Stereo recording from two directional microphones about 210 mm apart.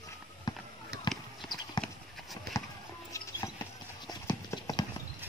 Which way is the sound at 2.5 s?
50° right (ahead or behind).